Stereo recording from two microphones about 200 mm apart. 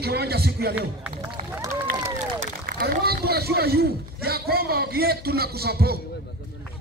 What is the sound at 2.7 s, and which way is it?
A man's voice, 50° right (ahead or behind).